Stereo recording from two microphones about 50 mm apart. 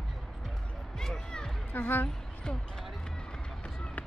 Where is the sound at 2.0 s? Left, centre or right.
Centre.